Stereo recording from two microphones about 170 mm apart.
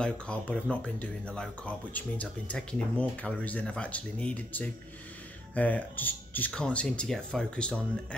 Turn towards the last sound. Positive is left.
turn(degrees=5)  # may be behind; listen again after turning